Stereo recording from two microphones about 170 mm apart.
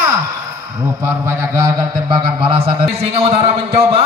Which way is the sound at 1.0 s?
15° right (ahead or behind).